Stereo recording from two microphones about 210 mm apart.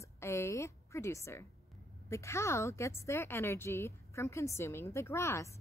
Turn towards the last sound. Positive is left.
turn(degrees=15)  # may be behind; listen again after turning